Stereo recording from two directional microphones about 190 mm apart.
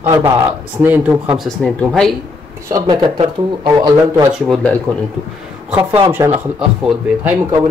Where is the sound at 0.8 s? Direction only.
10° right (ahead or behind).